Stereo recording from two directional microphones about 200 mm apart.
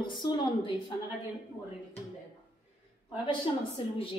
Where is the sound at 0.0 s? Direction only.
25° left (ahead or behind).